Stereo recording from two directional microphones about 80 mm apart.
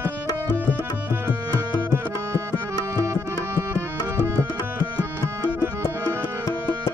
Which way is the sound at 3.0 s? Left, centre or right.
Right.